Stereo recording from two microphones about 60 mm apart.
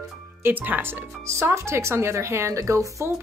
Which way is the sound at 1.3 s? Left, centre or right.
Right.